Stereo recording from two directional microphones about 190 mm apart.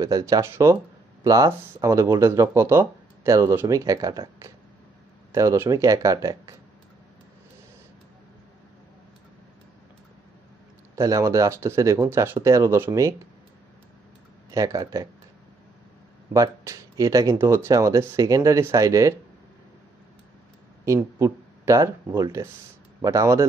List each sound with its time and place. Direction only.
0.0 s speech: 20° right (ahead or behind)
11.0 s speech: 15° right (ahead or behind)
14.5 s speech: 15° right (ahead or behind)
16.3 s speech: 15° right (ahead or behind)
20.8 s speech: 15° right (ahead or behind)